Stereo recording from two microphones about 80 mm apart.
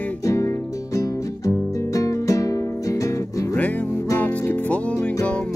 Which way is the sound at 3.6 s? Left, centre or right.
Centre.